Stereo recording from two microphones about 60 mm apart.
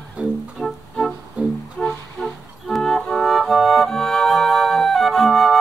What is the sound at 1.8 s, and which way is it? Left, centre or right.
Music, centre.